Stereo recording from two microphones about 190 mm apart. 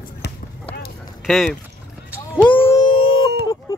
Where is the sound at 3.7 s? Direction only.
15° left (ahead or behind).